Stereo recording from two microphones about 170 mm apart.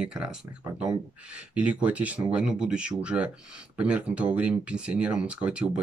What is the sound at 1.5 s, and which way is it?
Speech, 5° right (ahead or behind).